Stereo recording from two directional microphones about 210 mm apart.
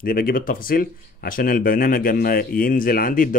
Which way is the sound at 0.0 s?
45° left (ahead or behind).